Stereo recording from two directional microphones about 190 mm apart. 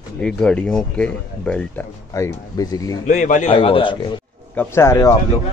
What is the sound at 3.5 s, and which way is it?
Speech, 25° left (ahead or behind).